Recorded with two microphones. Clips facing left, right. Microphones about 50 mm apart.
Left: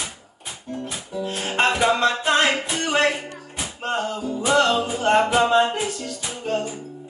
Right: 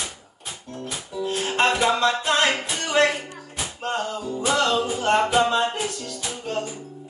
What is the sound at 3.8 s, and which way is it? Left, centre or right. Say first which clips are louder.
Music: left 2 dB; centre.